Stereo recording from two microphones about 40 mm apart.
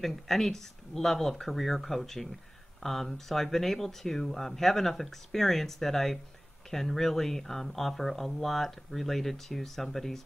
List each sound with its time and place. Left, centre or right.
0.0 s speech: centre